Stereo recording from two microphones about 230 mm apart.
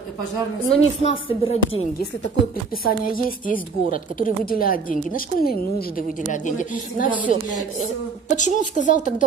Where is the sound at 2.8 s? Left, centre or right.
Left.